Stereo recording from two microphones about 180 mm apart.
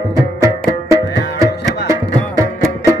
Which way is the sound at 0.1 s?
15° right (ahead or behind).